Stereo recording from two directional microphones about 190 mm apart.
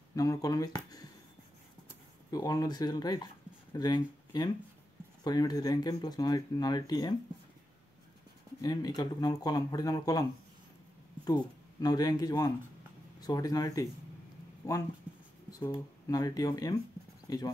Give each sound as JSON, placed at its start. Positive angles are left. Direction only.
{"t": 0.1, "sound": "speech", "side_deg": 20}
{"t": 2.3, "sound": "speech", "side_deg": 20}
{"t": 8.5, "sound": "speech", "side_deg": 20}
{"t": 11.2, "sound": "speech", "side_deg": 20}
{"t": 15.1, "sound": "a sound", "side_deg": -5}
{"t": 15.7, "sound": "speech", "side_deg": 20}